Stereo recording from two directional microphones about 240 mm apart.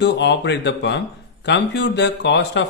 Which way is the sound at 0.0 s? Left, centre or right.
Left.